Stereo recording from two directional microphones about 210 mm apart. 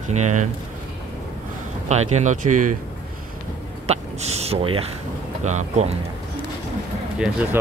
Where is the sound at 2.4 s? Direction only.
90° right.